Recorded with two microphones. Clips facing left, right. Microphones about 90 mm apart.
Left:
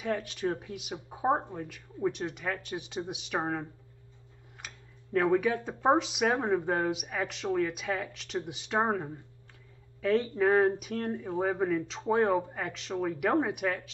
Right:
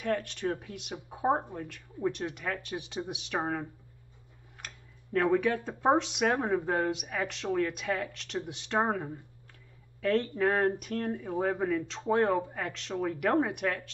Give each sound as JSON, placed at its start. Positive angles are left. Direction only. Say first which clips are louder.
{"t": 0.0, "sound": "speech", "louder": "even", "side_deg": 5}
{"t": 3.3, "sound": "speech", "louder": "even", "side_deg": 15}
{"t": 4.6, "sound": "tick-tock", "louder": "even", "side_deg": 0}
{"t": 5.7, "sound": "speech", "louder": "left 1 dB", "side_deg": 15}
{"t": 5.9, "sound": "speech", "louder": "even", "side_deg": 0}
{"t": 6.4, "sound": "speech", "louder": "left 1 dB", "side_deg": 15}
{"t": 6.7, "sound": "speech", "louder": "even", "side_deg": 0}
{"t": 11.1, "sound": "speech", "louder": "even", "side_deg": 20}
{"t": 11.9, "sound": "speech", "louder": "even", "side_deg": 5}